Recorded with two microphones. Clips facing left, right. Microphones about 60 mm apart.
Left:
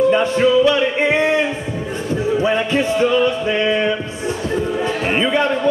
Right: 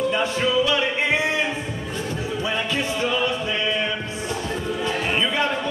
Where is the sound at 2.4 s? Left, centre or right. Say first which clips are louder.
Left 8 dB; left.